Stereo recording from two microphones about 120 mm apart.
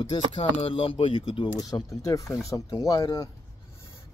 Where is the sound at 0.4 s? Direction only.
55° left (ahead or behind).